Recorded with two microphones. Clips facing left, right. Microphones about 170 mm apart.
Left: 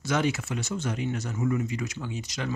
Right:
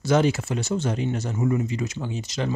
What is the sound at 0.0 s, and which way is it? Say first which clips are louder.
Speech: right 6 dB; 30° right (ahead or behind).